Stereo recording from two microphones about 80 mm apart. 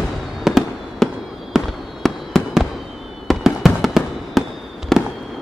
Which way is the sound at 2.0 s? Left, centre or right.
Centre.